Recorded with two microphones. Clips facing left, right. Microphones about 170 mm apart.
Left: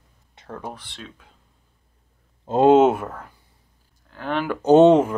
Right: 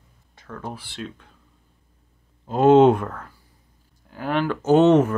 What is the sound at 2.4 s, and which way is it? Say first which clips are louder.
Speech: left 1 dB; 25° left (ahead or behind).